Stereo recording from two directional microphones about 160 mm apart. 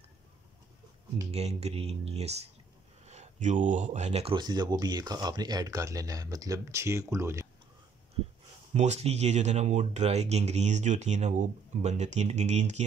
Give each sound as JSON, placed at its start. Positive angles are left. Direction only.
{"t": 1.3, "sound": "speech", "side_deg": -40}
{"t": 8.7, "sound": "speech", "side_deg": -45}